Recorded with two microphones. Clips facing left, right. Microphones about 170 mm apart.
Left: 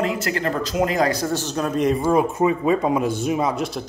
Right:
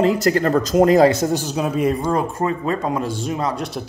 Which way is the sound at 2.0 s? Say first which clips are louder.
Left 2 dB; 5° left (ahead or behind).